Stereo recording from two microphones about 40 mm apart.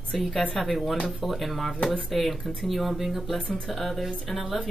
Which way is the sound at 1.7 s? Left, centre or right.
Centre.